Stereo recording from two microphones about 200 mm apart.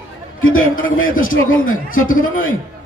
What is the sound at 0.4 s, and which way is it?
Speech, 90° left.